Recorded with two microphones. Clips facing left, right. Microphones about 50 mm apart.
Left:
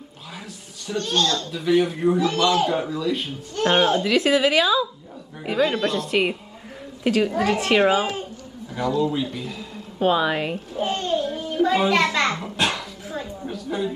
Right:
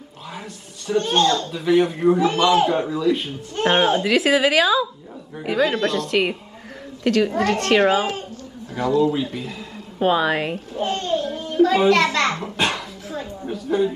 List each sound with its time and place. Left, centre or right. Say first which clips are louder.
0.9 s a child's voice: right 5 dB; right
1.5 s speech: right 2 dB; centre
2.1 s a child's voice: right 2 dB; right
2.7 s speech: right 4 dB; centre
3.6 s speech: right 1 dB; centre
4.1 s a woman's voice: right 1 dB; centre
9.0 s speech: right 3 dB; centre
10.8 s a sound: right 1 dB; centre
12.4 s dog: right 1 dB; centre
13.2 s a sound: right 2 dB; centre